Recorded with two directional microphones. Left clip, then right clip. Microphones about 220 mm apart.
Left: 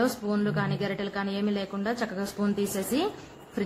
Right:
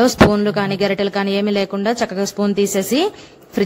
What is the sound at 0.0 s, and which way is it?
A woman's voice, 35° right (ahead or behind).